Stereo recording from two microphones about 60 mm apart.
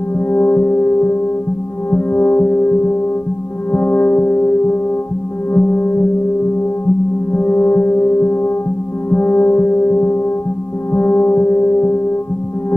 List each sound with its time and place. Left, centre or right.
0.3 s music: left
3.7 s singing bowl: left
7.3 s music: left